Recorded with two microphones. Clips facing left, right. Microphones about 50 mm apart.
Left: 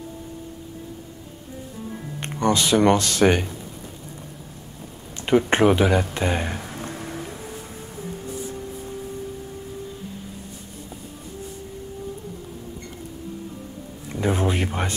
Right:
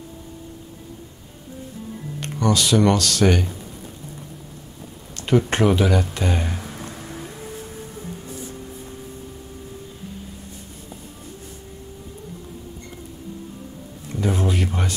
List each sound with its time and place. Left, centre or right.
2.1 s speech: left
5.2 s speech: left
6.8 s music: left
7.2 s music: centre
14.0 s a sound: left